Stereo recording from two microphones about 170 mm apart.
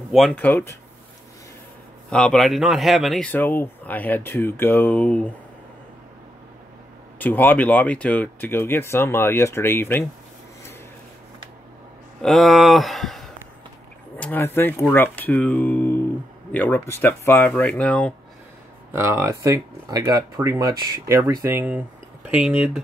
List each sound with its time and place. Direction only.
0.1 s speech: 5° left (ahead or behind)
2.0 s speech: 5° left (ahead or behind)
7.2 s speech: 10° left (ahead or behind)
12.2 s speech: centre (ahead or behind)
18.9 s speech: 15° right (ahead or behind)